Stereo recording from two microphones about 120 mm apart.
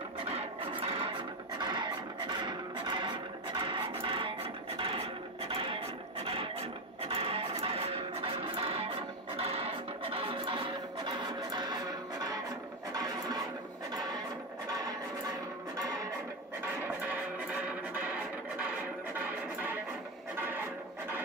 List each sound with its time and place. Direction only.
0.3 s music: 50° right (ahead or behind)
1.6 s a sound: 35° right (ahead or behind)
3.5 s music: 45° right (ahead or behind)
17.1 s music: 15° right (ahead or behind)